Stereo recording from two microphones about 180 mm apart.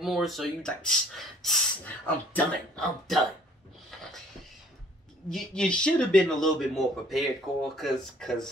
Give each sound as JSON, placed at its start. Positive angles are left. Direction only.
{"t": 0.0, "sound": "speech", "side_deg": 0}
{"t": 5.3, "sound": "speech", "side_deg": 5}